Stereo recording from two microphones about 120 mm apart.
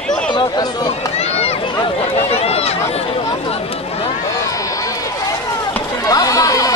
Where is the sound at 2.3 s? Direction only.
60° left (ahead or behind).